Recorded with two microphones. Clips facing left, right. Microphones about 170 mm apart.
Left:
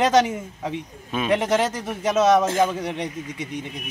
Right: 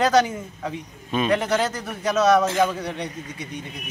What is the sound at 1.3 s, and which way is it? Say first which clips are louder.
A man's voice: left 1 dB; 25° left (ahead or behind).